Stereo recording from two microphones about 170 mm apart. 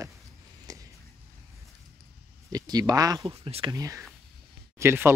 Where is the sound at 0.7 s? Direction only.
20° right (ahead or behind).